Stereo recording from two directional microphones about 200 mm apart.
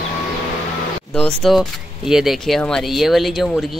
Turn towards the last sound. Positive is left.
turn(degrees=0)  # may be behind; listen again after turning